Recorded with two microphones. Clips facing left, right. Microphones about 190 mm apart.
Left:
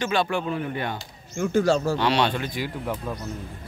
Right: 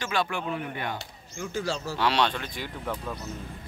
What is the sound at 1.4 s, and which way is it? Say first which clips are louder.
Speech: left 10 dB; 55° left (ahead or behind).